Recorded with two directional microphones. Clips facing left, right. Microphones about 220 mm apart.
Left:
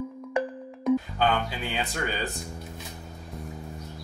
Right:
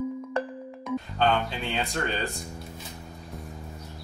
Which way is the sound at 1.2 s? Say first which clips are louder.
Right 1 dB; 5° left (ahead or behind).